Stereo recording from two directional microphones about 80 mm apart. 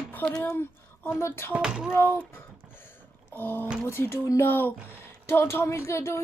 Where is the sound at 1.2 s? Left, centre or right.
Left.